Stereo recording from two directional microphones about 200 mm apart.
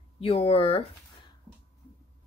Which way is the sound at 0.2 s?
30° left (ahead or behind).